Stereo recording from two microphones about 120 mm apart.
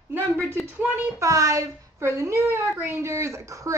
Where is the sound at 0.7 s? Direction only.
15° right (ahead or behind).